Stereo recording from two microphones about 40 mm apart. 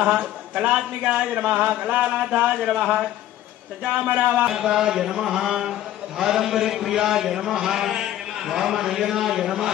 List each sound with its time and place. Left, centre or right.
0.6 s a man's voice: right
1.9 s music: right
2.3 s a man's voice: right
2.6 s a man's voice: centre
4.1 s music: right
4.5 s a man's voice: centre